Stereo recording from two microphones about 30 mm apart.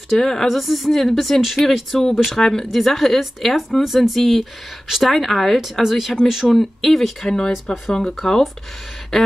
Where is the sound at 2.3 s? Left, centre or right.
Centre.